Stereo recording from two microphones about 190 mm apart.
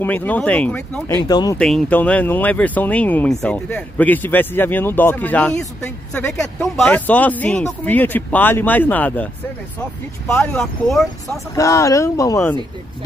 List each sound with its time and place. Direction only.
0.0 s speech: 10° left (ahead or behind)
1.2 s speech: 20° left (ahead or behind)
1.6 s speech: 5° left (ahead or behind)
11.5 s speech: 15° left (ahead or behind)